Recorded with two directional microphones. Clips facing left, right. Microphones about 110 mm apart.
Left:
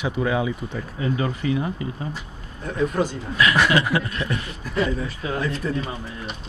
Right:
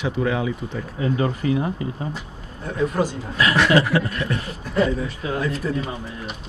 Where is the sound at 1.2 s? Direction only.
40° right (ahead or behind).